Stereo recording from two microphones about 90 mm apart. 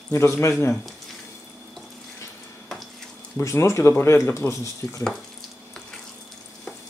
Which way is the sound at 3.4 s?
30° left (ahead or behind).